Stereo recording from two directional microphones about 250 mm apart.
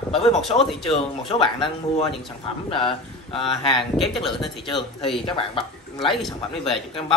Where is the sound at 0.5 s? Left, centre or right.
Centre.